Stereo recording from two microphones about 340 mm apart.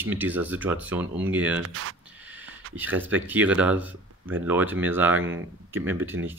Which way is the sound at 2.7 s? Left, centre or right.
Centre.